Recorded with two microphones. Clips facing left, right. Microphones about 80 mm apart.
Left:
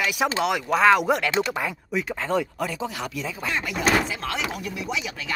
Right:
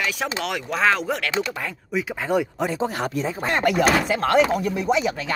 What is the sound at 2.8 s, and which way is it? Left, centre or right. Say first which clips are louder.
Speech: right 6 dB; right.